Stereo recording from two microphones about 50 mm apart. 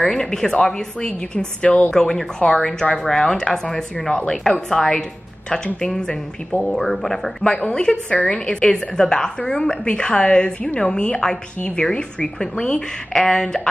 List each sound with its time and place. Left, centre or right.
0.0 s a woman's voice: centre
7.4 s a woman's voice: centre